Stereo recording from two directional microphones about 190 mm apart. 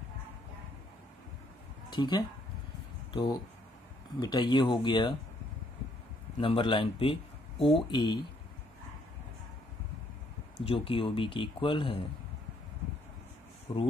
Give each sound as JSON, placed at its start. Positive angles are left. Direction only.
{"t": 1.9, "sound": "speech", "side_deg": 25}
{"t": 6.4, "sound": "speech", "side_deg": 25}
{"t": 10.6, "sound": "speech", "side_deg": 30}
{"t": 13.7, "sound": "speech", "side_deg": 30}